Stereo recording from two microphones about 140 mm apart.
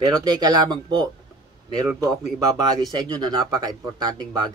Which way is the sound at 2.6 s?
30° right (ahead or behind).